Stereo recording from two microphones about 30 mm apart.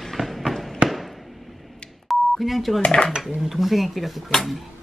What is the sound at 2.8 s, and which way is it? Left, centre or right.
Dishes, left.